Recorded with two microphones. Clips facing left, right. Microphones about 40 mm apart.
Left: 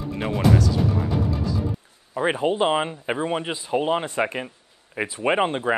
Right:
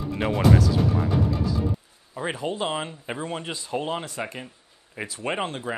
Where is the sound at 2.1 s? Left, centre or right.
Left.